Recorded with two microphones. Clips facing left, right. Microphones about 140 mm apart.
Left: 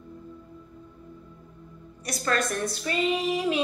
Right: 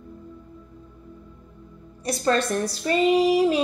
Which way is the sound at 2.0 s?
30° right (ahead or behind).